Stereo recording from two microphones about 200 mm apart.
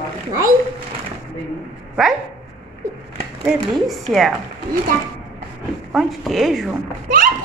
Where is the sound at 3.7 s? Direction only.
Centre (ahead or behind).